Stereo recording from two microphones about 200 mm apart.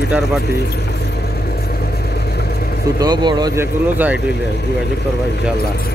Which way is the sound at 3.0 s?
20° right (ahead or behind).